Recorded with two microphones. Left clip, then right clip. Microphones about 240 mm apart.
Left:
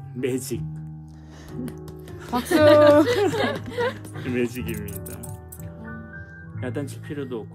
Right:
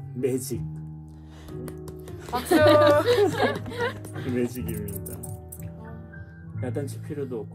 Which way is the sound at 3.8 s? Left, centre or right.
Left.